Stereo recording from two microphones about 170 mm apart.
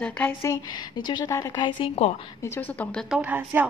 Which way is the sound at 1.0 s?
25° left (ahead or behind).